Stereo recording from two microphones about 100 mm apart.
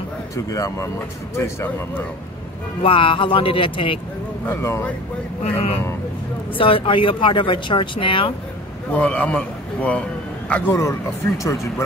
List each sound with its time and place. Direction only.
0.5 s speech: 35° left (ahead or behind)
2.8 s speech: 60° left (ahead or behind)
4.5 s speech: 25° left (ahead or behind)
5.4 s speech: 85° left
6.6 s speech: 60° left (ahead or behind)
8.9 s a man's voice: 15° left (ahead or behind)
10.7 s speech: 30° left (ahead or behind)